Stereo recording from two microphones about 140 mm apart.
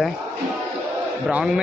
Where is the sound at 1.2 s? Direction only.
5° right (ahead or behind).